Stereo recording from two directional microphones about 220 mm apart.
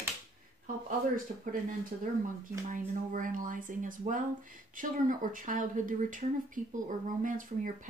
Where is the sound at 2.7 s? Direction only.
35° right (ahead or behind).